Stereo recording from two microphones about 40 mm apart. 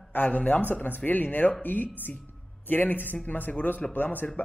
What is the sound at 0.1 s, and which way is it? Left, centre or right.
Speech, left.